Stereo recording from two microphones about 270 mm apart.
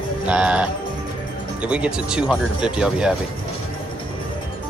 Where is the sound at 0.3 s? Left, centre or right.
Centre.